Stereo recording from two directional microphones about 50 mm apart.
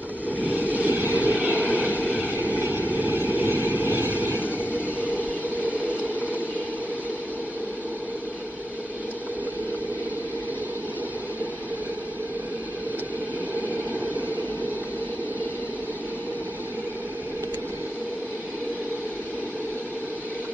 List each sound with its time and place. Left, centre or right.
0.4 s vehicle: right